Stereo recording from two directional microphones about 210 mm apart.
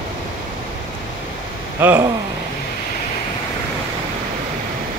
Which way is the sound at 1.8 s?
10° right (ahead or behind).